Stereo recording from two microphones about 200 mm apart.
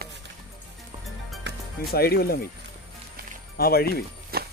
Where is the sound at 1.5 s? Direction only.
60° right (ahead or behind).